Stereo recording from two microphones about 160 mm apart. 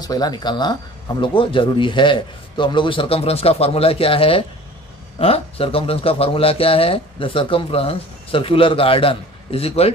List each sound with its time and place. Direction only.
0.0 s speech: 25° left (ahead or behind)